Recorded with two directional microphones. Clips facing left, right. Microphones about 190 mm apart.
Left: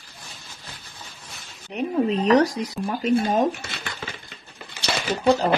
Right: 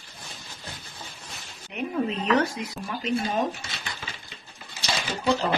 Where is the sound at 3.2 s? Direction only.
55° left (ahead or behind).